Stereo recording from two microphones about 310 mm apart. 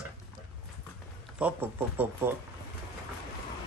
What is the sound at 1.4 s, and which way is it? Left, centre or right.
Speech, centre.